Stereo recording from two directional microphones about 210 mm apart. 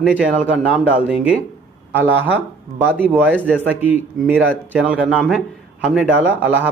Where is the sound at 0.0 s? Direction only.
5° right (ahead or behind).